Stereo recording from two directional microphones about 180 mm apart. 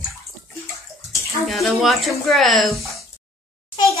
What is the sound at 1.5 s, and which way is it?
Speech, centre (ahead or behind).